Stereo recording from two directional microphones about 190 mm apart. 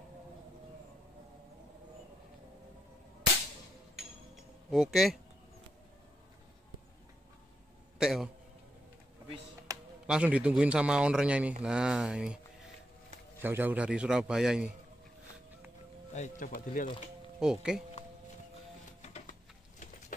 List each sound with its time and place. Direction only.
4.6 s a man's voice: centre (ahead or behind)
8.0 s a sound: centre (ahead or behind)
9.7 s a sound: 20° right (ahead or behind)
10.0 s a man's voice: 5° right (ahead or behind)
13.4 s a man's voice: 10° right (ahead or behind)
16.1 s speech: 40° left (ahead or behind)
17.4 s a man's voice: 5° right (ahead or behind)
19.0 s printer: 35° left (ahead or behind)